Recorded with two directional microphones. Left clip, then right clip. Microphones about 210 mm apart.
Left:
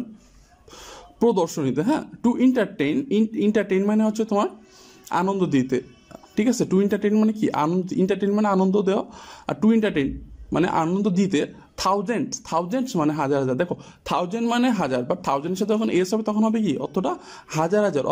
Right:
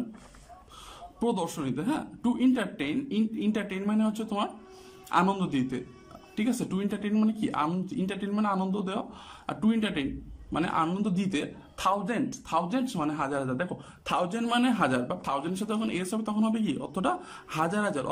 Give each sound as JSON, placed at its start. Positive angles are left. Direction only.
{"t": 0.8, "sound": "a man's voice", "side_deg": 20}